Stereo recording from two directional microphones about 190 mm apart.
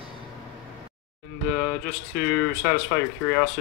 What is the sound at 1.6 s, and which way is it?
Speech, 5° right (ahead or behind).